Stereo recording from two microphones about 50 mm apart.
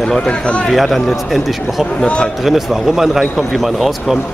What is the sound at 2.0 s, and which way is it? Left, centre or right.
Speech, centre.